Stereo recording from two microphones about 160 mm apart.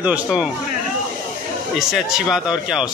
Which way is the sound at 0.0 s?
5° right (ahead or behind).